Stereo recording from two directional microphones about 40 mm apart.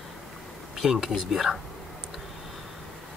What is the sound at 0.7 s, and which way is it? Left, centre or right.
Speech, centre.